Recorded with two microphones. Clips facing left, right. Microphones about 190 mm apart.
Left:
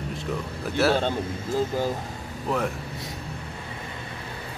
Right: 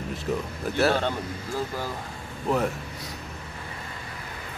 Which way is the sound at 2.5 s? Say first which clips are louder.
Right 2 dB; centre (ahead or behind).